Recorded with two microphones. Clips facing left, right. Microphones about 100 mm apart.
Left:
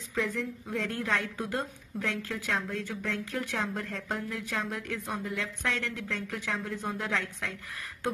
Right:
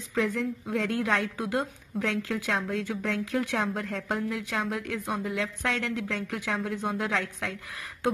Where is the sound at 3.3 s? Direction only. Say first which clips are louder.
Right 5 dB; 35° right (ahead or behind).